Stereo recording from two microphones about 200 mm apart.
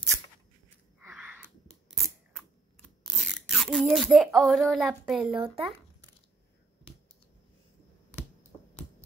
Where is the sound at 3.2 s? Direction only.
Centre (ahead or behind).